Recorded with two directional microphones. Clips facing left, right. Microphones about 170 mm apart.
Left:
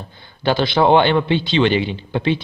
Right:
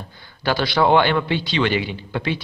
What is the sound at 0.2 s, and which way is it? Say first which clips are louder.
A man's voice: left 4 dB; 25° left (ahead or behind).